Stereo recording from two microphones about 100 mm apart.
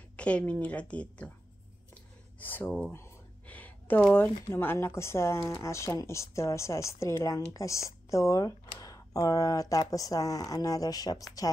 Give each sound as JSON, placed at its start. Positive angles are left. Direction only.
{"t": 0.1, "sound": "a woman's voice", "side_deg": 10}
{"t": 2.4, "sound": "speech", "side_deg": 20}
{"t": 2.9, "sound": "a sound", "side_deg": 20}
{"t": 4.1, "sound": "speech", "side_deg": 20}